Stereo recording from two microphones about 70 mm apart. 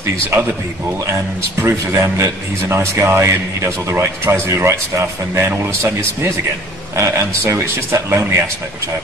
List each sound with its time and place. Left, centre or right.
0.0 s a man's voice: right
1.6 s a man's voice: right